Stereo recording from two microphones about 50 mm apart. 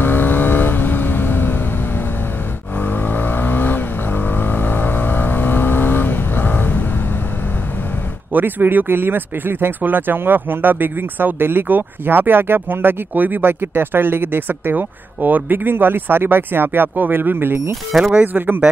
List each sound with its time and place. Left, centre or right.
0.0 s vehicle: left
2.8 s vehicle: left
8.3 s speech: right